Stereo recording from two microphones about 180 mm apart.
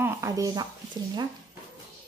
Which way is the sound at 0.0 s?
15° right (ahead or behind).